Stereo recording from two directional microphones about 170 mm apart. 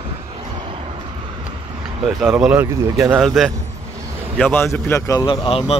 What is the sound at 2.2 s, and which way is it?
Speech, 5° right (ahead or behind).